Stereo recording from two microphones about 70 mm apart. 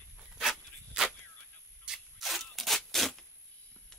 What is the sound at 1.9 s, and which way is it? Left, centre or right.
Rub, centre.